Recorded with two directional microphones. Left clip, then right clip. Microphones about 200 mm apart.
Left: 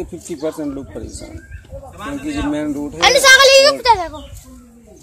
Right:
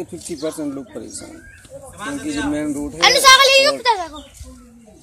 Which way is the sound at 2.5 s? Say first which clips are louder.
Left 2 dB; centre (ahead or behind).